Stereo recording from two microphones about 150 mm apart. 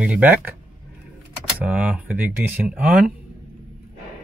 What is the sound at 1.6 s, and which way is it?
Speech, 10° right (ahead or behind).